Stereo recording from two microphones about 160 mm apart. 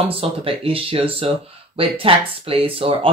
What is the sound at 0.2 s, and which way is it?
Speech, 35° right (ahead or behind).